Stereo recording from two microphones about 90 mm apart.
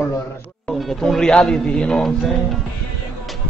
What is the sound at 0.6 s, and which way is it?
Speech, centre (ahead or behind).